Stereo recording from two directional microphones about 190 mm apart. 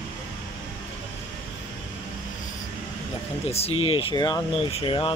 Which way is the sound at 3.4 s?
35° left (ahead or behind).